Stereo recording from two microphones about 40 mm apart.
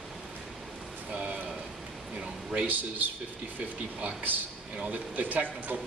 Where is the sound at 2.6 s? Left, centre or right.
Right.